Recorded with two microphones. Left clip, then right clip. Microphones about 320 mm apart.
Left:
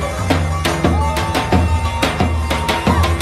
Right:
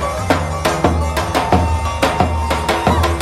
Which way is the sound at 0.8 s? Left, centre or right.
Right.